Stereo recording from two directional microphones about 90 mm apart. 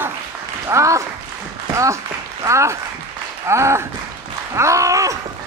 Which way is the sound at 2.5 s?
35° right (ahead or behind).